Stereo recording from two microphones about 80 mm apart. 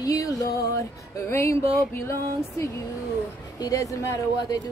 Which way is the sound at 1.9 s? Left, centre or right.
Left.